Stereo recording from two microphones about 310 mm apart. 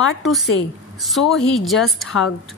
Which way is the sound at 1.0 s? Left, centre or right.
Centre.